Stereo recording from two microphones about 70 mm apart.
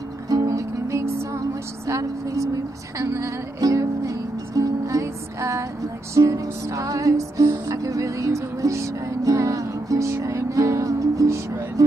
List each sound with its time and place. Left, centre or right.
0.3 s music: right
1.9 s speech: right
6.1 s music: right